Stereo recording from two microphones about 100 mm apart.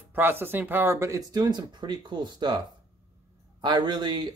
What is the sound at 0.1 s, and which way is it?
Speech, 20° right (ahead or behind).